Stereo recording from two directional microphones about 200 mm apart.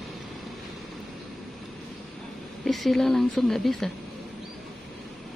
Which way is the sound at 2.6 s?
Centre (ahead or behind).